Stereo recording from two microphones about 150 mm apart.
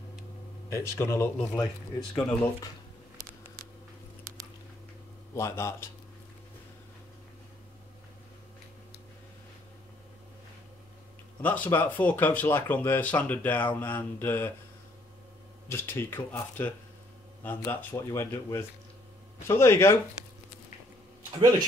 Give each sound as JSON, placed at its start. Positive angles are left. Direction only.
{"t": 0.7, "sound": "speech", "side_deg": 20}
{"t": 5.3, "sound": "speech", "side_deg": 20}
{"t": 11.4, "sound": "speech", "side_deg": 10}
{"t": 15.7, "sound": "speech", "side_deg": 15}
{"t": 21.4, "sound": "speech", "side_deg": -30}